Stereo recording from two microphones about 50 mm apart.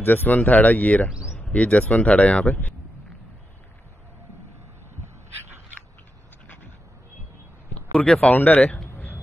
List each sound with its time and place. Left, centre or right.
0.0 s speech: left
6.4 s quack: left
7.7 s a sound: left
8.3 s speech: left